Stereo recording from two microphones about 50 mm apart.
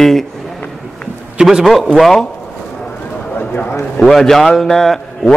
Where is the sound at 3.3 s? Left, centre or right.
Left.